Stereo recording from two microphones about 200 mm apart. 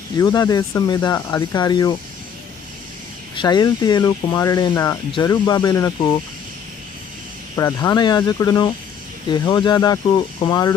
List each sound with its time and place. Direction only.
0.2 s speech: 20° left (ahead or behind)
3.3 s speech: 20° left (ahead or behind)
7.5 s speech: 15° left (ahead or behind)